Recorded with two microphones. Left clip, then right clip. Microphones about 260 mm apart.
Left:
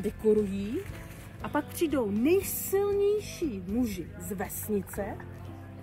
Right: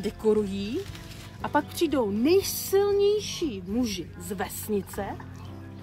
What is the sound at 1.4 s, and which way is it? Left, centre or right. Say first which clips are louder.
A woman's voice: right 5 dB; right.